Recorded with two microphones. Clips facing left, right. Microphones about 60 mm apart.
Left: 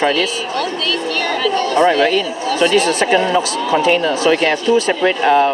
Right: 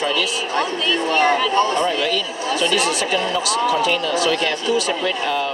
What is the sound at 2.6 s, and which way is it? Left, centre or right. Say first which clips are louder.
Speech: left 6 dB; left.